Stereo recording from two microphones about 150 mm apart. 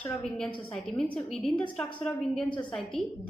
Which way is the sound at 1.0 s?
5° left (ahead or behind).